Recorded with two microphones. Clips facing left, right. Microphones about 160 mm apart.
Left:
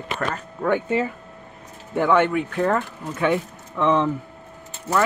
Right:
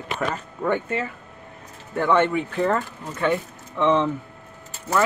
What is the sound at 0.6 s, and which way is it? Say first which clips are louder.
Speech: left 2 dB; 10° left (ahead or behind).